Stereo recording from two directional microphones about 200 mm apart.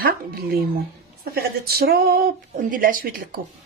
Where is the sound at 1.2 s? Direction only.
50° right (ahead or behind).